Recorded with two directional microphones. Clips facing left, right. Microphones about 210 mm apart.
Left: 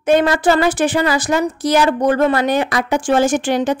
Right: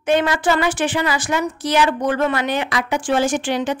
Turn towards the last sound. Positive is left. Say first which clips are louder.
# left 4 dB
turn(degrees=45)  # may be behind; listen again after turning